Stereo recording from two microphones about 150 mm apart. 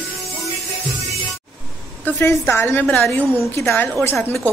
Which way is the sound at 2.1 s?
15° left (ahead or behind).